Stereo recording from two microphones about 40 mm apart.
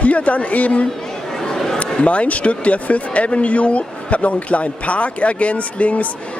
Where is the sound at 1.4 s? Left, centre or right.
Centre.